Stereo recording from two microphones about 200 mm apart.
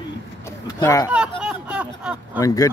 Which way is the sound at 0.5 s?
15° left (ahead or behind).